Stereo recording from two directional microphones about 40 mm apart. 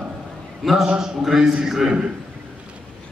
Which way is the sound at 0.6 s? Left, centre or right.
Centre.